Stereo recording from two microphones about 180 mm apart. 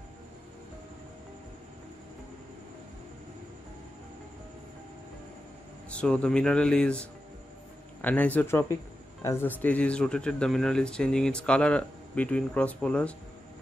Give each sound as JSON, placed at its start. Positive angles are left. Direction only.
{"t": 5.9, "sound": "speech", "side_deg": 5}